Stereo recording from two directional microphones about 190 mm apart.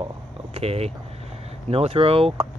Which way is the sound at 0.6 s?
30° right (ahead or behind).